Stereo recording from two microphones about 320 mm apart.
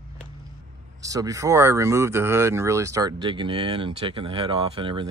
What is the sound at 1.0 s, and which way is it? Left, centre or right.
Speech, centre.